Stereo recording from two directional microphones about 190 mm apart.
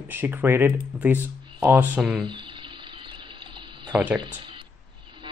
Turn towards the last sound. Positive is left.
turn(degrees=-25)  # may be behind; listen again after turning